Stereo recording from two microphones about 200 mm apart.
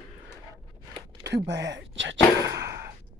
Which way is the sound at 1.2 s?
60° right (ahead or behind).